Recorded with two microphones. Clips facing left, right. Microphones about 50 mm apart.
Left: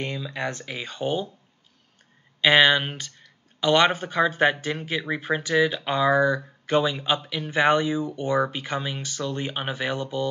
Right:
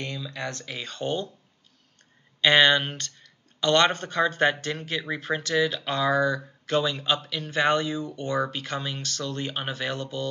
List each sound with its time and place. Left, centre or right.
0.0 s speech: left
2.4 s speech: centre